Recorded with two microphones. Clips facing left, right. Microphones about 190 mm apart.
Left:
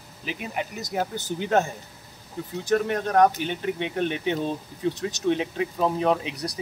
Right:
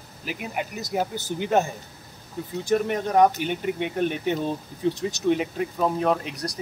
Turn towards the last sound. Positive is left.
turn(degrees=0)  # may be behind; listen again after turning